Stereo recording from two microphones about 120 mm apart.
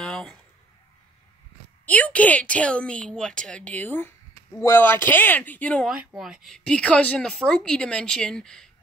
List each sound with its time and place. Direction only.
0.0 s a sound: 5° left (ahead or behind)
1.9 s speech: 10° left (ahead or behind)
5.9 s a woman's voice: 5° right (ahead or behind)